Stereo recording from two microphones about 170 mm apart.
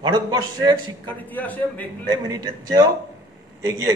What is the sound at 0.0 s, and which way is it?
Speech, 25° right (ahead or behind).